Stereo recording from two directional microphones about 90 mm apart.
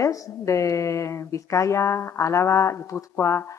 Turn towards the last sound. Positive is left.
turn(degrees=30)  # may be behind; listen again after turning